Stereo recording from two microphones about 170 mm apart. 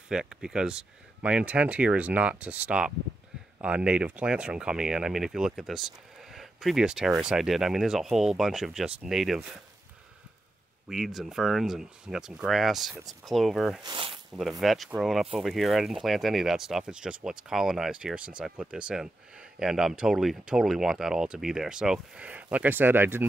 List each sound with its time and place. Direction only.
0.1 s speech: 5° right (ahead or behind)
10.9 s speech: centre (ahead or behind)
13.8 s speech: 30° right (ahead or behind)
14.3 s speech: centre (ahead or behind)